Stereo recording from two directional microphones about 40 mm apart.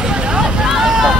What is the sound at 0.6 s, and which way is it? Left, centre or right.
Boat, centre.